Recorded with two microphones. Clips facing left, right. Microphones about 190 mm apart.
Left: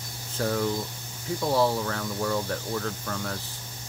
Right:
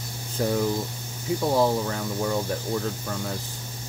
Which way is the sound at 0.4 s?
15° right (ahead or behind).